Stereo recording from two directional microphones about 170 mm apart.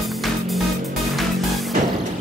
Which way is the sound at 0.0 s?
Centre (ahead or behind).